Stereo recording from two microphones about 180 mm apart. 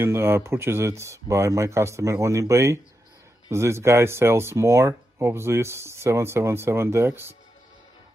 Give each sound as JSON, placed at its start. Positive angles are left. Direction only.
{"t": 0.0, "sound": "speech", "side_deg": -15}